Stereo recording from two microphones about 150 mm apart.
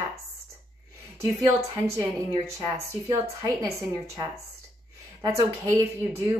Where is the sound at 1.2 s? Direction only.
20° right (ahead or behind).